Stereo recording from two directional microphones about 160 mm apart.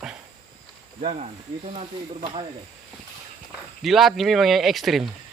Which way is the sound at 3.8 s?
Centre (ahead or behind).